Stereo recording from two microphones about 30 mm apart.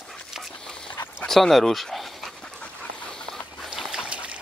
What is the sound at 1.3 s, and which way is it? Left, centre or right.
Speech, centre.